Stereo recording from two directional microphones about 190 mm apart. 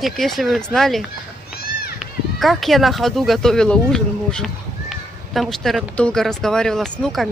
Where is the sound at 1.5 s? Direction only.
55° left (ahead or behind).